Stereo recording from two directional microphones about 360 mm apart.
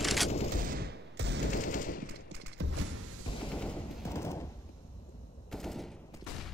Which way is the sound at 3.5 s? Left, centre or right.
Centre.